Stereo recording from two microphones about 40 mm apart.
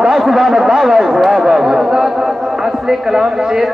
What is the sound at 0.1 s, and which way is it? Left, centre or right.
Speech, centre.